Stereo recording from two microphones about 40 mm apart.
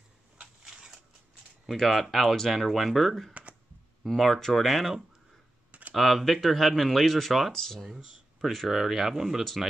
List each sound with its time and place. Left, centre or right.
0.7 s a sound: centre
1.7 s speech: centre
4.0 s speech: centre
5.7 s computer keyboard: right
5.9 s speech: centre
8.4 s speech: centre
9.4 s speech: centre